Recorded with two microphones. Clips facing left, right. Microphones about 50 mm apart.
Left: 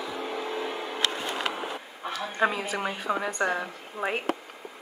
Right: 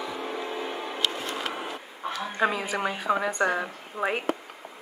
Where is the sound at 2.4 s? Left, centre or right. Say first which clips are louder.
Even; centre.